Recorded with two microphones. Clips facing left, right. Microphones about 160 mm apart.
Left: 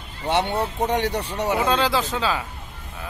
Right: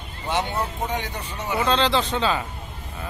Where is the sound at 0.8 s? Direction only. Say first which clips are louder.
Left 6 dB; 75° left (ahead or behind).